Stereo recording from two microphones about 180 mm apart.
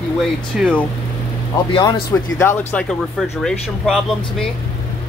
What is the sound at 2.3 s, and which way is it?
Speech, 10° left (ahead or behind).